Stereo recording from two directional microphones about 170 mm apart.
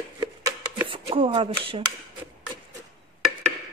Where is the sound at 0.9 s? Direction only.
30° right (ahead or behind).